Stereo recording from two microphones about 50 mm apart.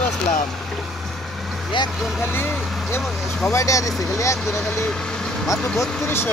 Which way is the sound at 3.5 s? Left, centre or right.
Left.